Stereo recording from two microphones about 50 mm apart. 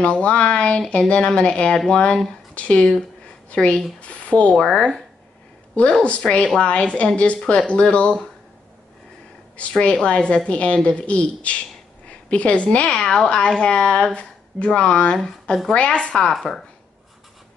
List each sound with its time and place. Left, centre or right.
0.0 s a woman's voice: left
6.0 s speech: left
9.6 s speech: left
13.4 s speech: left
16.2 s speech: centre